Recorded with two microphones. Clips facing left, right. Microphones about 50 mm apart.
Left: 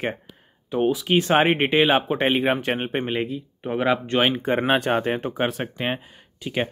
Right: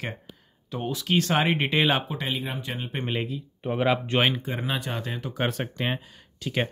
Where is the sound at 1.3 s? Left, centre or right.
Left.